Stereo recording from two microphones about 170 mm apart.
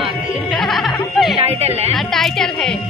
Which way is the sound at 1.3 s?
35° right (ahead or behind).